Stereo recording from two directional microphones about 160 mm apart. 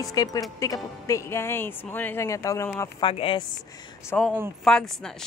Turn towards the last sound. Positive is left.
turn(degrees=0)  # may be behind; listen again after turning